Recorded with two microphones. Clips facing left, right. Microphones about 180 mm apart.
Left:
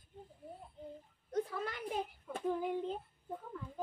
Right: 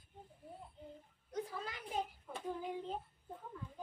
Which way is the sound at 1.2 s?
55° left (ahead or behind).